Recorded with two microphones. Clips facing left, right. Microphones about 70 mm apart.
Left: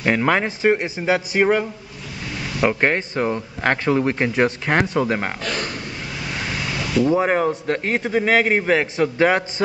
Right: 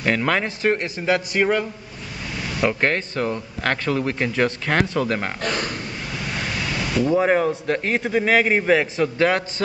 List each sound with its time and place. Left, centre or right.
0.0 s a man's voice: centre
7.0 s a man's voice: centre